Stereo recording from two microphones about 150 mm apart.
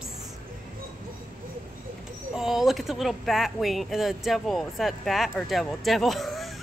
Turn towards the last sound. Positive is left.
turn(degrees=0)  # may be behind; listen again after turning